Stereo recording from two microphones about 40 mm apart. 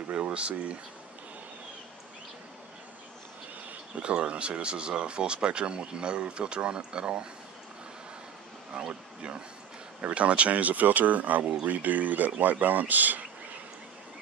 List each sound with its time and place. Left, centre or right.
0.1 s speech: right
4.0 s speech: right
8.7 s speech: right